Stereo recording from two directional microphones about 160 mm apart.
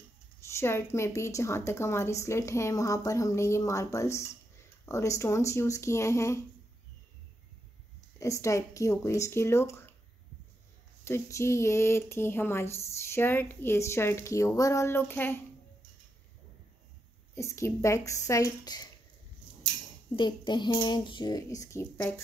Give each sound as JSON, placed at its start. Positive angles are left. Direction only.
{"t": 0.6, "sound": "speech", "side_deg": 15}
{"t": 8.2, "sound": "speech", "side_deg": 20}
{"t": 11.1, "sound": "speech", "side_deg": 15}
{"t": 17.4, "sound": "speech", "side_deg": 20}
{"t": 20.2, "sound": "speech", "side_deg": 30}